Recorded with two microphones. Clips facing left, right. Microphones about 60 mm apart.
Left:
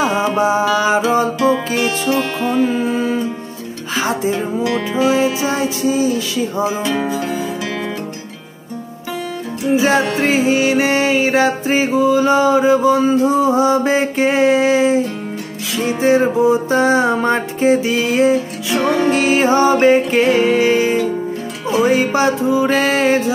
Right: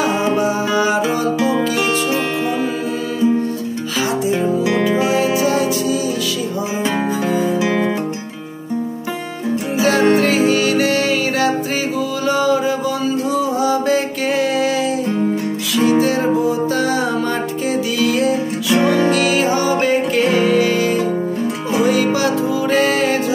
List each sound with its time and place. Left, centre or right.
0.0 s music: right
0.4 s music: left
2.0 s music: centre
4.3 s music: right
5.5 s music: left
6.8 s music: right
9.8 s music: left
16.0 s music: left